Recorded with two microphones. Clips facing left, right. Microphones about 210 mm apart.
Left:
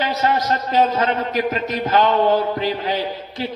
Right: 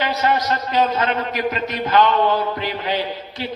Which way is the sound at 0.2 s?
40° left (ahead or behind).